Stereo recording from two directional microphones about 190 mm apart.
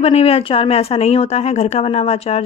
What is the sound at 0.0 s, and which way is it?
Speech, 30° left (ahead or behind).